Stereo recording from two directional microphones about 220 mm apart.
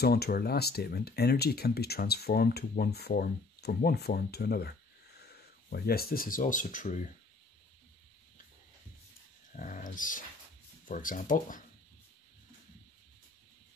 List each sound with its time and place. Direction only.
0.0 s speech: 45° left (ahead or behind)
9.6 s speech: 35° left (ahead or behind)